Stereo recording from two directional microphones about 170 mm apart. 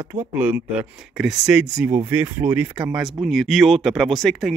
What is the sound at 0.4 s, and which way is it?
Speech, 10° right (ahead or behind).